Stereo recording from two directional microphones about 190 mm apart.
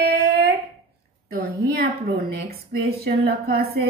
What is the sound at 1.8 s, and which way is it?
Speech, 55° right (ahead or behind).